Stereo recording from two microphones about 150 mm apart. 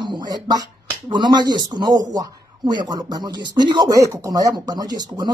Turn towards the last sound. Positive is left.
turn(degrees=-25)  # may be behind; listen again after turning